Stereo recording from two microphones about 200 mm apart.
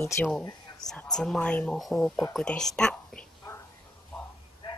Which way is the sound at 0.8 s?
5° left (ahead or behind).